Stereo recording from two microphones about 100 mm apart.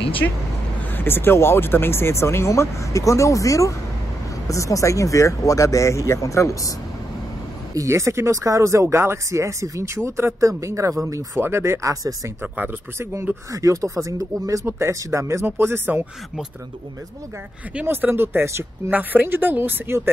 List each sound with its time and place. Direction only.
0.9 s speech: 20° left (ahead or behind)
7.7 s speech: 30° right (ahead or behind)
12.5 s speech: 20° right (ahead or behind)
13.5 s speech: 35° right (ahead or behind)
17.7 s speech: 20° right (ahead or behind)